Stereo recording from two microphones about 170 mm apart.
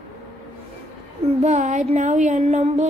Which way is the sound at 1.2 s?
40° right (ahead or behind).